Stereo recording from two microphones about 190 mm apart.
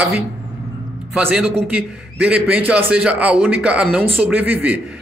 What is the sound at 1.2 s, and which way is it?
A man's voice, 10° right (ahead or behind).